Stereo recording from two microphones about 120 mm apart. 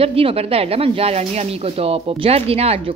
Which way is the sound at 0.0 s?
50° right (ahead or behind).